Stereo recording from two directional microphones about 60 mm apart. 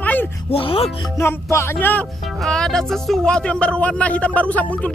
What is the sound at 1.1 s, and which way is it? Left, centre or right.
Music, left.